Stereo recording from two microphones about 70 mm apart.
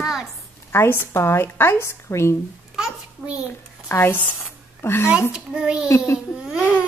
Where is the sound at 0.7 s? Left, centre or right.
Left.